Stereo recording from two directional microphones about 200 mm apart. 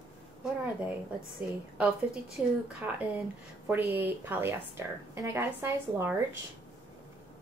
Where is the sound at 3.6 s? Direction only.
10° right (ahead or behind).